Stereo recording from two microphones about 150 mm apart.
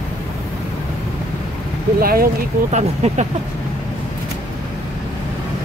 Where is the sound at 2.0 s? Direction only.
80° right.